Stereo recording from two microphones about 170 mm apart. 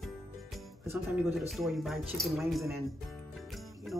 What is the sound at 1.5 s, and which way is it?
Speech, centre (ahead or behind).